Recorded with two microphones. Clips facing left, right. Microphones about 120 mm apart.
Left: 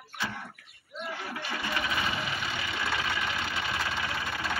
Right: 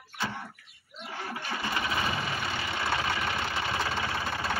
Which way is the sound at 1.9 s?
35° right (ahead or behind).